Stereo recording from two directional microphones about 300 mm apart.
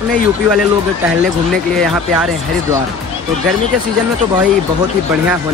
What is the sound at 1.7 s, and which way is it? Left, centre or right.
Speech, centre.